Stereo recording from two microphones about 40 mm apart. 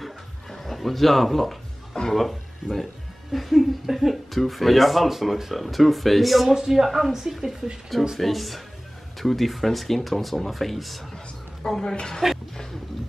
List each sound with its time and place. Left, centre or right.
0.0 s a sound: centre
2.1 s a woman's voice: centre
11.9 s a woman's voice: left